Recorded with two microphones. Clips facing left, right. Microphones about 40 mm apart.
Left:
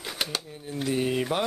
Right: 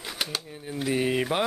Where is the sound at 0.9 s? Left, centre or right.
Centre.